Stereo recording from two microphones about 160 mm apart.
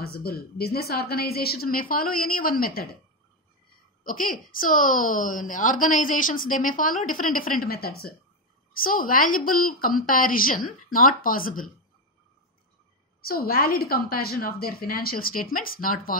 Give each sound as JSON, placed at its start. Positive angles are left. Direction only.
{"t": 0.0, "sound": "a woman's voice", "side_deg": 70}
{"t": 4.0, "sound": "a woman's voice", "side_deg": 60}
{"t": 13.2, "sound": "a woman's voice", "side_deg": 70}